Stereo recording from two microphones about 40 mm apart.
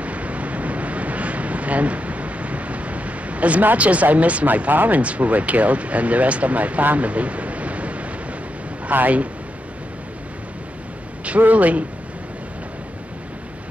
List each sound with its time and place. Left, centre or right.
0.0 s a sound: right
3.7 s speech: right
11.2 s speech: right